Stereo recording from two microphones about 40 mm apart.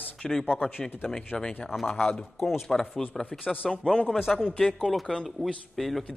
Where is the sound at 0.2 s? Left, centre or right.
Centre.